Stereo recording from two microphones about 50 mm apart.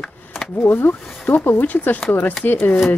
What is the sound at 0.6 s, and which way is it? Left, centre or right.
Speech, left.